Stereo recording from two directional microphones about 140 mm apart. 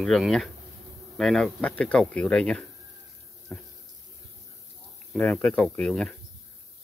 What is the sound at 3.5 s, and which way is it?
Water tap, 5° left (ahead or behind).